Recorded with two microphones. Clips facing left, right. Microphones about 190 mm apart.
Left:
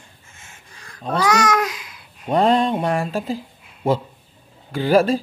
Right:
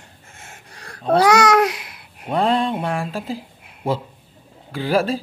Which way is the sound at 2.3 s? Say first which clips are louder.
Left 2 dB; centre (ahead or behind).